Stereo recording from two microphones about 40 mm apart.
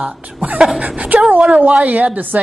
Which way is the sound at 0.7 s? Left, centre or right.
Right.